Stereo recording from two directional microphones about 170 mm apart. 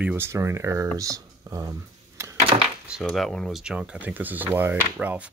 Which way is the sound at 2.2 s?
15° right (ahead or behind).